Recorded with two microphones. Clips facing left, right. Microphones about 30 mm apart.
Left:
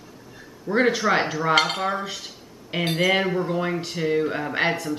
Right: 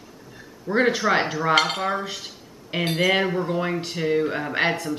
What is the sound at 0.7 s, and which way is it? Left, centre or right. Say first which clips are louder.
Cutlery: even; centre.